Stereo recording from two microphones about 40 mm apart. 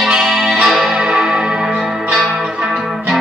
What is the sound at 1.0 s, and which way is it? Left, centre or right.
Music, centre.